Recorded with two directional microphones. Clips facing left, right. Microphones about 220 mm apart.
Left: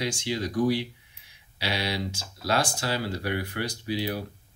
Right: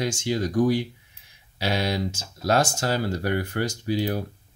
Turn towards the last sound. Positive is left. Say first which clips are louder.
# right 4 dB
turn(degrees=-45)  # may be behind; listen again after turning